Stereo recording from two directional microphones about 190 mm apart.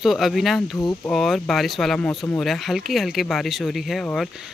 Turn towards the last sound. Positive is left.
turn(degrees=0)  # may be behind; listen again after turning